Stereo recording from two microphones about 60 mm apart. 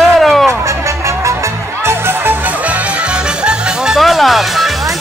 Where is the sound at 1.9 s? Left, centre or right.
Right.